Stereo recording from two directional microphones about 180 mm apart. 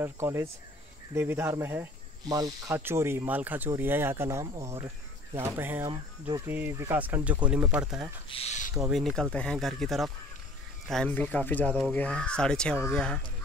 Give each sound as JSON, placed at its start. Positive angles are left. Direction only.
{"t": 0.0, "sound": "speech", "side_deg": -15}
{"t": 8.3, "sound": "speech", "side_deg": 35}
{"t": 8.9, "sound": "speech", "side_deg": 0}